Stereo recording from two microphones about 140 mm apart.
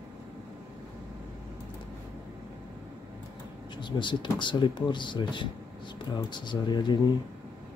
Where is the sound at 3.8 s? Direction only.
35° left (ahead or behind).